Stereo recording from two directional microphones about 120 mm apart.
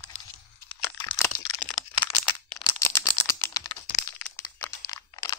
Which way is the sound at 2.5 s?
25° left (ahead or behind).